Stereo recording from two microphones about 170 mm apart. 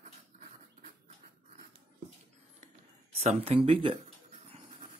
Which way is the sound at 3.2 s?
40° right (ahead or behind).